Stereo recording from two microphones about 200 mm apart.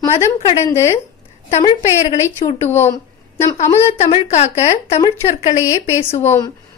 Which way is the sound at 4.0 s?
35° left (ahead or behind).